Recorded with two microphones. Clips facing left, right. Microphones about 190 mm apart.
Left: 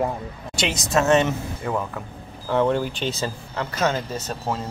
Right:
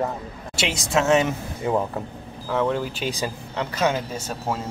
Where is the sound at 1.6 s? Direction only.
25° right (ahead or behind).